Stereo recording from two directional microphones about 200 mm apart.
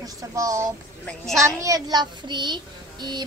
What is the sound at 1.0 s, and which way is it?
Speech, centre (ahead or behind).